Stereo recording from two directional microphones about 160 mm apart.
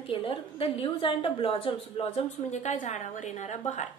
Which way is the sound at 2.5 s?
45° left (ahead or behind).